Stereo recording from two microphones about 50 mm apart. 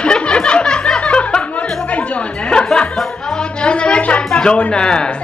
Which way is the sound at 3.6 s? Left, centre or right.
Left.